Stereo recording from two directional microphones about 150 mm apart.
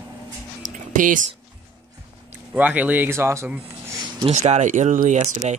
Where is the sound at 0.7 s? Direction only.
60° right (ahead or behind).